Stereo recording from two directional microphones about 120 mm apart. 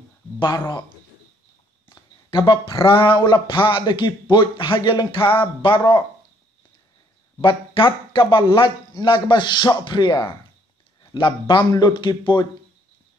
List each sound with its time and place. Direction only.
0.4 s speech: 35° left (ahead or behind)
2.0 s a sound: 40° left (ahead or behind)
2.8 s speech: 40° left (ahead or behind)
7.4 s speech: 45° left (ahead or behind)